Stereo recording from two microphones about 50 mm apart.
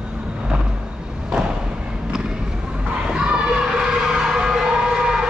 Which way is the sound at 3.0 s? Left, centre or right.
Centre.